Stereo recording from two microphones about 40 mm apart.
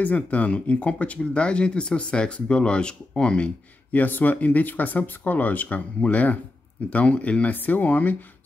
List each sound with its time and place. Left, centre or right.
0.0 s speech: left
3.9 s speech: left